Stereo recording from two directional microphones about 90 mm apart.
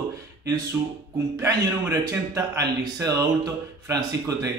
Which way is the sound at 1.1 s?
40° right (ahead or behind).